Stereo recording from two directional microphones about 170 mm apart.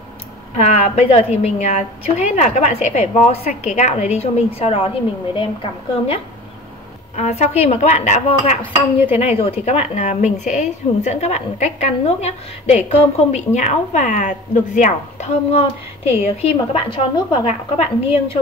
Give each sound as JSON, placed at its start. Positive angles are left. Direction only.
{"t": 0.6, "sound": "a woman's voice", "side_deg": 35}